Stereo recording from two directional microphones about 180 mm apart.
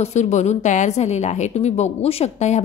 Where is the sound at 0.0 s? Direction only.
40° left (ahead or behind).